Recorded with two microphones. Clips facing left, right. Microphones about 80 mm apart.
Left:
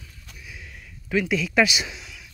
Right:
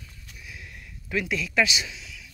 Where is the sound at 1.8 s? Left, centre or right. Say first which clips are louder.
Left 3 dB; left.